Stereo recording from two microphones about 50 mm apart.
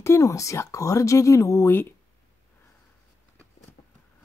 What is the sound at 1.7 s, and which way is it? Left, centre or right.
Speech, left.